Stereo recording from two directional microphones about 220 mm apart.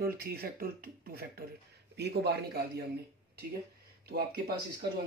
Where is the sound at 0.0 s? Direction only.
40° right (ahead or behind).